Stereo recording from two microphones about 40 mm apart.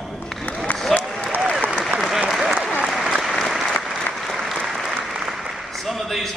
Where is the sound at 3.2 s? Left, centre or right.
Centre.